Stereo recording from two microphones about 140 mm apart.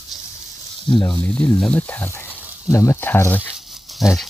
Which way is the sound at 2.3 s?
10° right (ahead or behind).